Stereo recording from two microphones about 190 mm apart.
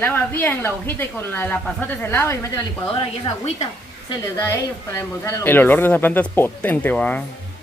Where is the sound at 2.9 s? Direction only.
30° left (ahead or behind).